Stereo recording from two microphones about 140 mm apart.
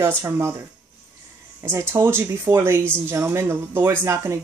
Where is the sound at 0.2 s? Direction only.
20° right (ahead or behind).